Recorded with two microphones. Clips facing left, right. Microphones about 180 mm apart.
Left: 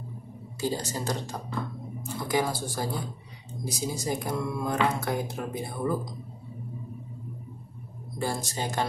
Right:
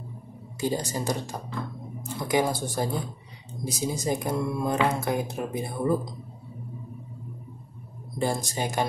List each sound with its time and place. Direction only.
0.6 s speech: 15° right (ahead or behind)
2.2 s speech: 20° right (ahead or behind)
8.2 s speech: 15° right (ahead or behind)